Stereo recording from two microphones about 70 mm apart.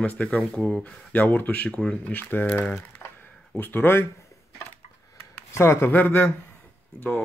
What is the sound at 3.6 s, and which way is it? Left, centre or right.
Speech, left.